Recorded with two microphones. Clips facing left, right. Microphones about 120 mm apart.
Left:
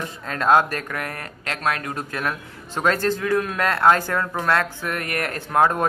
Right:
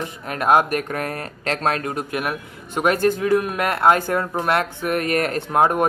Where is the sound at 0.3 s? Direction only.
20° right (ahead or behind).